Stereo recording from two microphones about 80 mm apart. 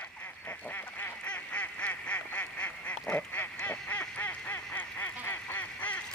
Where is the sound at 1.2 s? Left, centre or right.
Centre.